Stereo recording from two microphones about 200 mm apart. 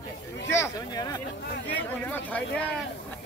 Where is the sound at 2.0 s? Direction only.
10° left (ahead or behind).